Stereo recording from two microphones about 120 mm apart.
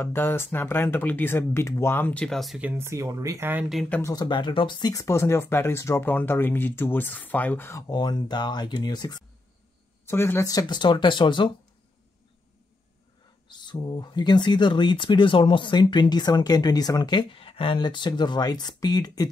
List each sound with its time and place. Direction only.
0.0 s speech: 15° left (ahead or behind); by 2.6 s centre (ahead or behind)
2.6 s speech: 10° right (ahead or behind)
2.9 s speech: 25° right (ahead or behind)
4.0 s speech: 35° left (ahead or behind); by 7.8 s 20° left (ahead or behind)
7.9 s speech: 35° left (ahead or behind)
10.0 s speech: 20° left (ahead or behind)
10.5 s speech: 35° left (ahead or behind)
13.5 s speech: 40° left (ahead or behind)